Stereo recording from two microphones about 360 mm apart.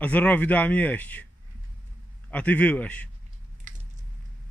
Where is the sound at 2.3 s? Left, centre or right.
Centre.